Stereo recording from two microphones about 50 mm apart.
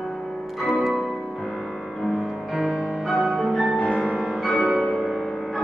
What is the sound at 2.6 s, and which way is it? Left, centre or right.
Music, right.